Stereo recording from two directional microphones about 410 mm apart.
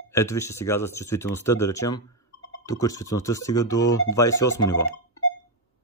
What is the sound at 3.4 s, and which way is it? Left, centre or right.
Speech, left.